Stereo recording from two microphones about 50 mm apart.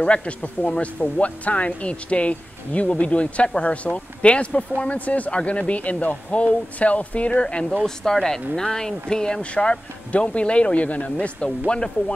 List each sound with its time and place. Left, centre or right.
0.0 s speech: left
7.8 s speech: centre